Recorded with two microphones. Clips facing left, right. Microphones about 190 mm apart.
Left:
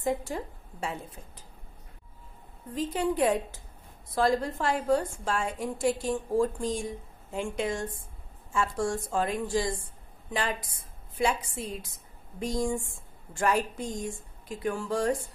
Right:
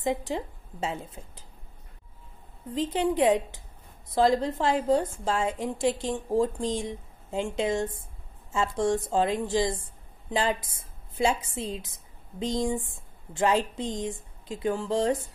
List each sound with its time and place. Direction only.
0.0 s a woman's voice: 20° right (ahead or behind)
2.7 s a woman's voice: 20° right (ahead or behind)